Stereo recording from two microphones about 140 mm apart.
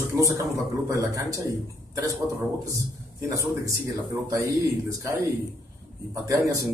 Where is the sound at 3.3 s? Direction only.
20° right (ahead or behind).